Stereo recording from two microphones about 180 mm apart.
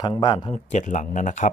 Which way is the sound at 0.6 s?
40° left (ahead or behind).